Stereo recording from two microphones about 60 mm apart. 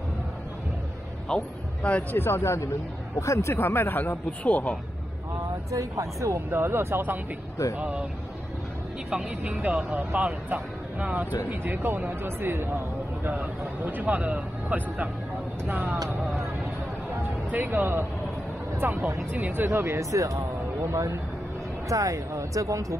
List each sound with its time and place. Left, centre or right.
1.3 s a man's voice: left
2.1 s speech: left
3.5 s speech: left
5.7 s speech: right
6.5 s speech: right
7.7 s a man's voice: right
9.1 s a man's voice: centre
11.6 s a man's voice: right
17.5 s speech: right